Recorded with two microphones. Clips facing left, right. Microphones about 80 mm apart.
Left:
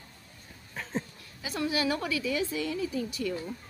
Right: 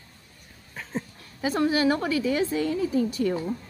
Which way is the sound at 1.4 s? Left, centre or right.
Right.